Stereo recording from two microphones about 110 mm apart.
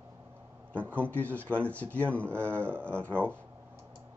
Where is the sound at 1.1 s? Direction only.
15° left (ahead or behind).